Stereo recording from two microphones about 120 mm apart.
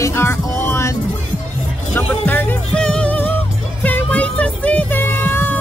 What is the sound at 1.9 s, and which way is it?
Music, 15° left (ahead or behind).